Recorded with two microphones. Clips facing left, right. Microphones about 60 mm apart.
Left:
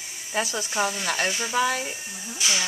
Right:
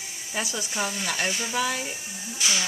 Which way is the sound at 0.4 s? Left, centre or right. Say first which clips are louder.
Left 3 dB; left.